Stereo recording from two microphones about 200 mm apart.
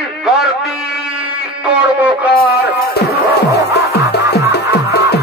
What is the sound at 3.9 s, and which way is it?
Music, 55° left (ahead or behind).